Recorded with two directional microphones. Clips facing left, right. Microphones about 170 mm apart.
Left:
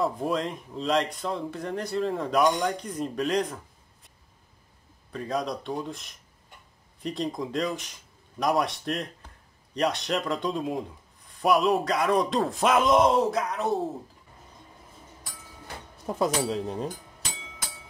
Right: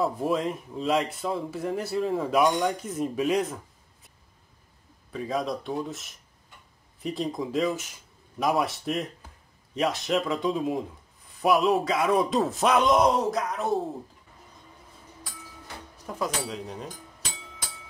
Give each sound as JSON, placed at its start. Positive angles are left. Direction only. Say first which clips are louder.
{"t": 0.0, "sound": "speech", "louder": "right 1 dB", "side_deg": -5}
{"t": 5.1, "sound": "speech", "louder": "right 1 dB", "side_deg": 0}
{"t": 16.1, "sound": "speech", "louder": "left 5 dB", "side_deg": 25}